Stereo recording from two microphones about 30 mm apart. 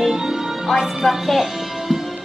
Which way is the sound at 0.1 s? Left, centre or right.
Centre.